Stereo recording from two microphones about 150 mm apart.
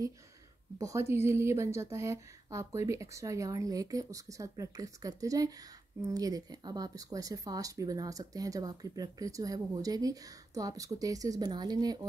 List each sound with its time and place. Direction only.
0.7 s a woman's voice: 20° right (ahead or behind)